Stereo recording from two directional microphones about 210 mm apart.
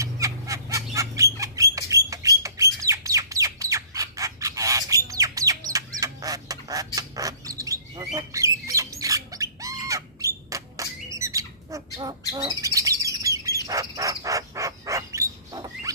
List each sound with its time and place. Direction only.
0.0 s bird: 15° right (ahead or behind)